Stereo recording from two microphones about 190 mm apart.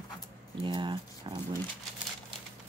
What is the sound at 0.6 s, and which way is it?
Speech, 25° right (ahead or behind).